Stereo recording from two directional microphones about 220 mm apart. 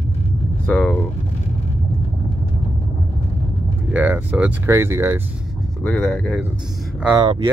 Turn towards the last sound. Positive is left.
turn(degrees=-20)  # may be behind; listen again after turning